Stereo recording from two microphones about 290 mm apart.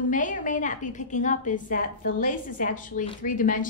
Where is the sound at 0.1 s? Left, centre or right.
Left.